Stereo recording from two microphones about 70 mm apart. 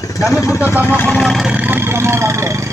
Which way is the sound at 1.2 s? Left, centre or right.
Centre.